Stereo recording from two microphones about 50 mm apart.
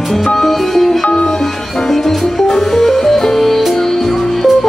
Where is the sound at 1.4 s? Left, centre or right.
Centre.